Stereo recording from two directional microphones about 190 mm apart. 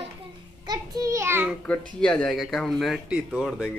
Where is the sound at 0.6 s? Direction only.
20° right (ahead or behind).